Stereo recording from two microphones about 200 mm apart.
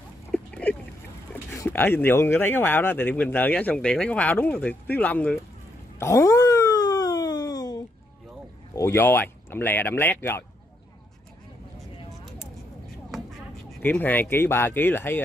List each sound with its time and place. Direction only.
0.3 s a sound: 5° left (ahead or behind)
1.3 s speech: 10° left (ahead or behind)
5.9 s wail: 15° left (ahead or behind)
8.7 s speech: 15° left (ahead or behind)
13.7 s speech: 10° left (ahead or behind)